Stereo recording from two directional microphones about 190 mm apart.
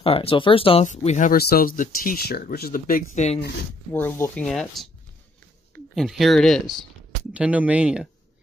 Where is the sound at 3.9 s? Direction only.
15° left (ahead or behind).